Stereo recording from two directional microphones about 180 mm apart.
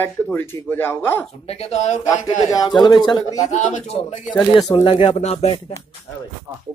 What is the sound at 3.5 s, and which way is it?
Speech, 40° left (ahead or behind).